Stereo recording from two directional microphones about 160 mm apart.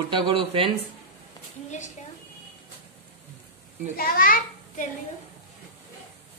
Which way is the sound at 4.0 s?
65° left (ahead or behind).